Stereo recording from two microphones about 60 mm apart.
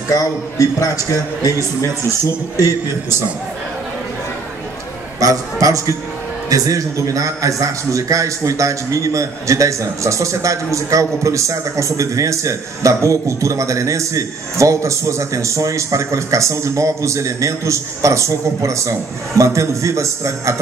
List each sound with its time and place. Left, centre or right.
0.1 s a man's voice: left
5.2 s a man's voice: right